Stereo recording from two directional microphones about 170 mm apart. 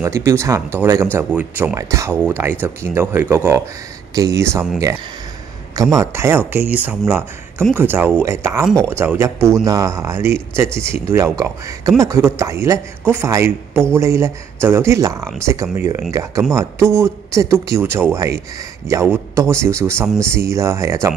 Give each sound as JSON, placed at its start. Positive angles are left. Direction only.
{"t": 0.0, "sound": "speech", "side_deg": -15}
{"t": 8.6, "sound": "speech", "side_deg": 5}
{"t": 8.9, "sound": "speech", "side_deg": -15}